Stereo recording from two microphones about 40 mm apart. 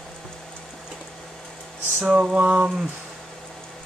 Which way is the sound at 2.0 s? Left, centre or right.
Right.